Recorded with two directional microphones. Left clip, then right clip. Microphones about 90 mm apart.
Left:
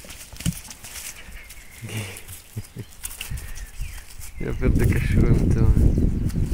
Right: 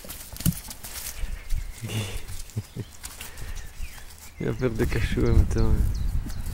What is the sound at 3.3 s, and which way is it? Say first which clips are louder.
Bird flight: left 2 dB; 5° left (ahead or behind).